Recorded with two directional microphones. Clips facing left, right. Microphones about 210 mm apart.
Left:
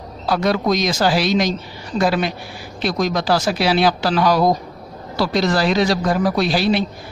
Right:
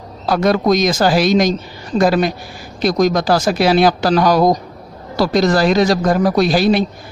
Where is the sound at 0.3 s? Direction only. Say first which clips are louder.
Right 4 dB; 45° right (ahead or behind).